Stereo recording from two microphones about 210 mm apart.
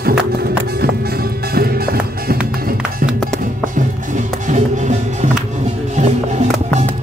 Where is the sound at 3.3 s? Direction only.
40° right (ahead or behind).